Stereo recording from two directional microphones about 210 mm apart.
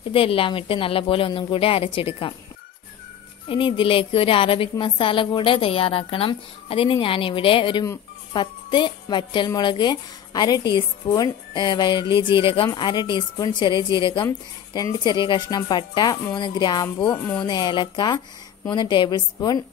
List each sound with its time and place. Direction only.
0.1 s a woman's voice: 25° left (ahead or behind)
3.4 s a woman's voice: 25° left (ahead or behind)
17.0 s speech: 10° left (ahead or behind)
17.4 s a woman's voice: 20° left (ahead or behind)